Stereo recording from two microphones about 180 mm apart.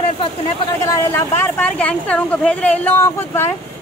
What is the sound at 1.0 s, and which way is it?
Speech, 15° left (ahead or behind).